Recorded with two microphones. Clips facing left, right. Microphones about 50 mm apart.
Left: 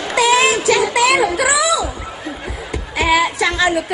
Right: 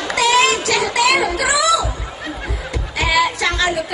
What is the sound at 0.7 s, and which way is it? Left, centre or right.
Speech, centre.